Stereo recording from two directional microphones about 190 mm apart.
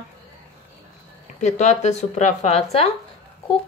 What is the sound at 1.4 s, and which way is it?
A woman's voice, 40° left (ahead or behind).